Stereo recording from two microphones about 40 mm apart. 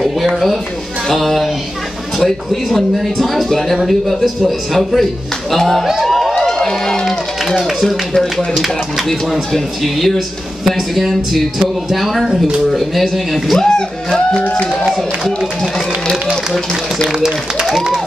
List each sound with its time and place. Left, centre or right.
1.0 s speech: centre
3.7 s speech: centre
5.9 s music: centre
6.6 s crowd: centre
7.1 s a sound: centre
8.5 s speech: centre
9.0 s speech: centre
13.6 s speech: centre
15.0 s speech: centre
17.1 s speech: centre